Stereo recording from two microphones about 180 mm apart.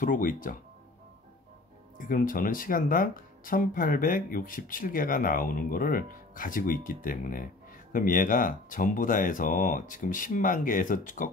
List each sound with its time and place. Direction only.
0.0 s speech: 50° left (ahead or behind)
2.0 s speech: 50° left (ahead or behind)